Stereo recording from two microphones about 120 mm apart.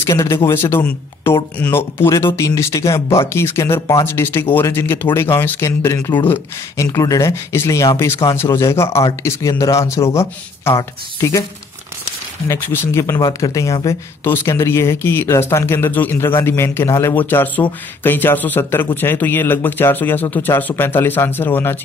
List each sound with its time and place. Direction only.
0.0 s speech: 25° left (ahead or behind)
6.9 s speech: 30° left (ahead or behind)
12.4 s speech: 15° left (ahead or behind)